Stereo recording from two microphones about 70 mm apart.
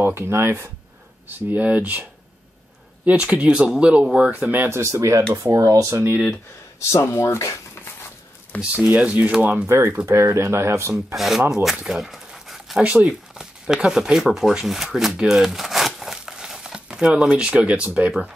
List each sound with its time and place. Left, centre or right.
0.0 s speech: right
1.5 s speech: right
3.1 s speech: centre; by 6.1 s right
6.9 s speech: left
8.7 s speech: centre
9.7 s speech: right
11.1 s speech: centre
11.7 s a sound: centre
12.8 s speech: centre